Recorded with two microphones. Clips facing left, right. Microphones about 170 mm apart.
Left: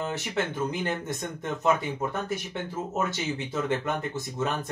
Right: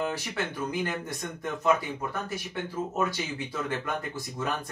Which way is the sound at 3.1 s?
25° left (ahead or behind).